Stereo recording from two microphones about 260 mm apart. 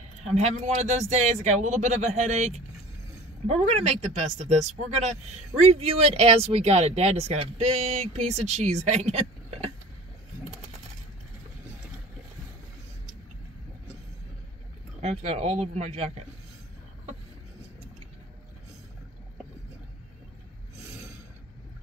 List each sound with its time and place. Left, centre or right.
0.2 s speech: right
15.0 s speech: right